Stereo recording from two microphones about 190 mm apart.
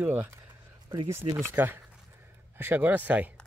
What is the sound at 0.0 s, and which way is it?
Speech, 10° right (ahead or behind).